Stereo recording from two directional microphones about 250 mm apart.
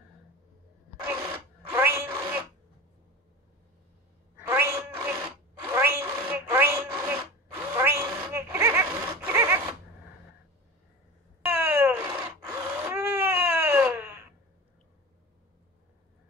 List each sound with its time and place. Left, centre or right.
1.7 s cat: centre
4.5 s cat: centre
5.6 s zipper: centre
11.4 s a sound: centre